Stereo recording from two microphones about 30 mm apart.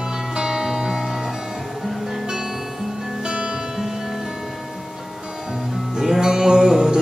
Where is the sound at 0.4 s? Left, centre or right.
Centre.